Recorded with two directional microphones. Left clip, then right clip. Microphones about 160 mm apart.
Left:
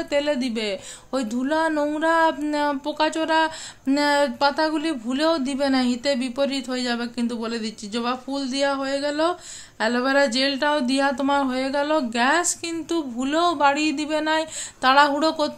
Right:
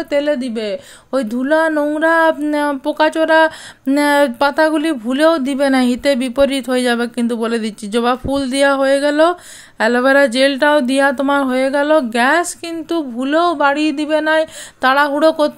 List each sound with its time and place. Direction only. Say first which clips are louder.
0.1 s speech: right 6 dB; 35° right (ahead or behind)